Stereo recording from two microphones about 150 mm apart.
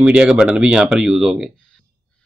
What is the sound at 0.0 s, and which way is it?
Speech, 5° right (ahead or behind).